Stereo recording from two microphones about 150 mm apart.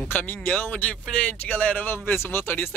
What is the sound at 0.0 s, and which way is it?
Speech, 10° left (ahead or behind).